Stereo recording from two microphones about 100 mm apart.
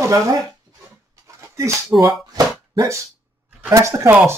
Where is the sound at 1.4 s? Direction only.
35° right (ahead or behind).